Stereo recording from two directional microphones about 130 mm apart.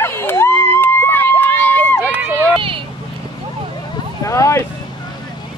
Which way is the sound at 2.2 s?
15° right (ahead or behind).